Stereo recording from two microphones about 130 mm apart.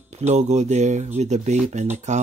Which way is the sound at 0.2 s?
60° right (ahead or behind).